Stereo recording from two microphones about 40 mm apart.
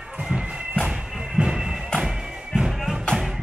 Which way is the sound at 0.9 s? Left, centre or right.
Centre.